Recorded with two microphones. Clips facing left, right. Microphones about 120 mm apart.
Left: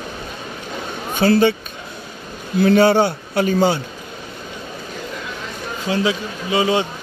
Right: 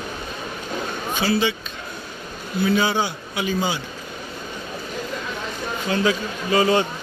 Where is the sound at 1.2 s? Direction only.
55° left (ahead or behind).